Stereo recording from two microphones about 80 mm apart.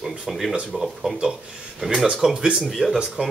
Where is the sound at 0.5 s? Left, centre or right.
Centre.